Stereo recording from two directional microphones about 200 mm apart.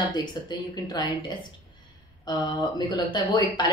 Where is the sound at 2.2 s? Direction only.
20° left (ahead or behind).